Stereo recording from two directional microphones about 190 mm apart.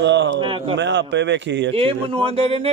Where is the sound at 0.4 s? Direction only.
25° right (ahead or behind).